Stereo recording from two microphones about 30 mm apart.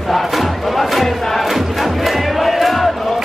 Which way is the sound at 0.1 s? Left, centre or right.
Centre.